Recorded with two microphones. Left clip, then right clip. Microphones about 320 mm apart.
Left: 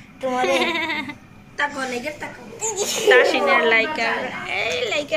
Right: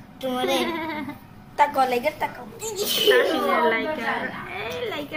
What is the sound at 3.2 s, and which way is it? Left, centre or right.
Speech, left.